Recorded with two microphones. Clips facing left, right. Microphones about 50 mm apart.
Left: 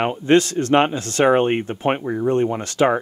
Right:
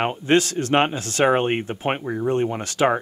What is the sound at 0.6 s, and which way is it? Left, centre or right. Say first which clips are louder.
Speech: left 3 dB; centre.